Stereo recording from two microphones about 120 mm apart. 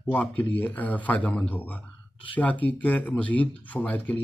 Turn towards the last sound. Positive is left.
turn(degrees=10)  # may be behind; listen again after turning